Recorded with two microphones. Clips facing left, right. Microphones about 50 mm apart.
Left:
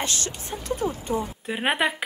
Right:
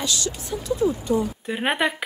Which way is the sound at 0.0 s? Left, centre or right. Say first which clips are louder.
Right 2 dB; left.